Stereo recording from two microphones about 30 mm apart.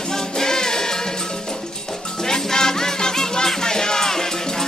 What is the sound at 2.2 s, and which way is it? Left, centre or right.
Music, centre.